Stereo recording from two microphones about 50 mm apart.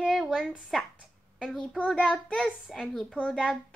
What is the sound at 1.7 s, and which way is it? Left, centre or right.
Child singing, centre.